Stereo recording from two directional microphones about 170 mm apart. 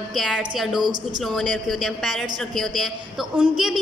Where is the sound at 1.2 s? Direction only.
Centre (ahead or behind).